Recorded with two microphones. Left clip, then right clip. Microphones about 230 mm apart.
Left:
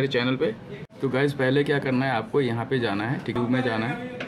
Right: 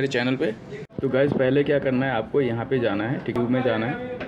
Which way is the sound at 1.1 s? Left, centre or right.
Centre.